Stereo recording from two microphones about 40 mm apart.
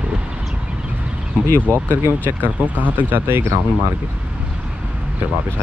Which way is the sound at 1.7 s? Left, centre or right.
Right.